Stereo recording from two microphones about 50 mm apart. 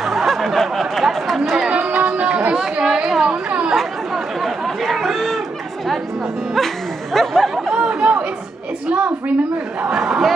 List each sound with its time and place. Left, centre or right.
0.0 s chatter: centre
1.9 s chatter: right; by 3.3 s centre
4.4 s chatter: centre
7.2 s chatter: centre
7.7 s chatter: centre
9.9 s crowd: centre